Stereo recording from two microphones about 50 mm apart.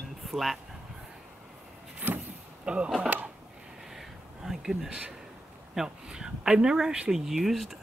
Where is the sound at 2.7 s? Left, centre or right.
Centre.